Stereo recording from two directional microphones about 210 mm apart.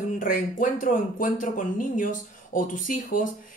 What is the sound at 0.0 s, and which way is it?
Speech, 40° left (ahead or behind).